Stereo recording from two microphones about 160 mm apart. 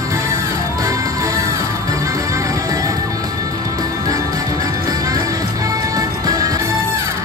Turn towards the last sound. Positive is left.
turn(degrees=-20)  # may be behind; listen again after turning